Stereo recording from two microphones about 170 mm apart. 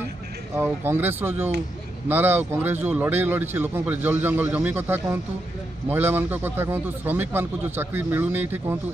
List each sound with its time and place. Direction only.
0.7 s speech: 10° right (ahead or behind)